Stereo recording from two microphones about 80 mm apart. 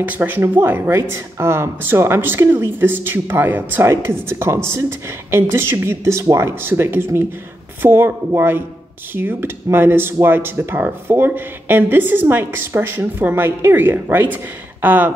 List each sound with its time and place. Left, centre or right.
0.0 s speech: right
3.8 s speech: right